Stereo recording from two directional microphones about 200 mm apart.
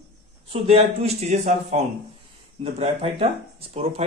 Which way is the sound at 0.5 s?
30° right (ahead or behind).